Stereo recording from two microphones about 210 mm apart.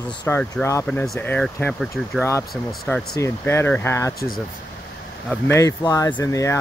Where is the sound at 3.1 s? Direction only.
15° left (ahead or behind).